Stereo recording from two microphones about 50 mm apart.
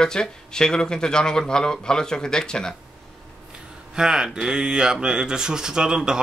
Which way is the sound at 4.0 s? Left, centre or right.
Centre.